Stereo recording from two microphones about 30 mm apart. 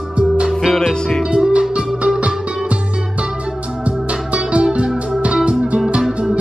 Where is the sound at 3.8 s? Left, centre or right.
Right.